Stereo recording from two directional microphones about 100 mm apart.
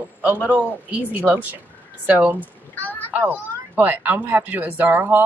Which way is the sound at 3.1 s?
20° right (ahead or behind).